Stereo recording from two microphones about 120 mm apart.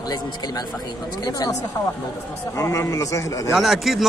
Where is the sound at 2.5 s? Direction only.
25° left (ahead or behind).